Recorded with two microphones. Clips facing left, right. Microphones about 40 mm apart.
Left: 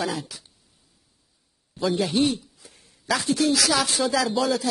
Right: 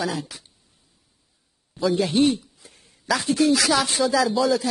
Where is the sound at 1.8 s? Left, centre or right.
Centre.